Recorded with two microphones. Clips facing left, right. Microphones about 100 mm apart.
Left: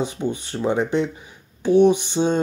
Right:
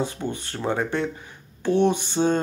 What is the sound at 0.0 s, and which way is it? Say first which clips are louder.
Speech: left 3 dB; 15° left (ahead or behind).